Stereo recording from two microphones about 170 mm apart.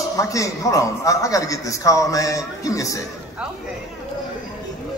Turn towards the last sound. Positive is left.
turn(degrees=-5)  # may be behind; listen again after turning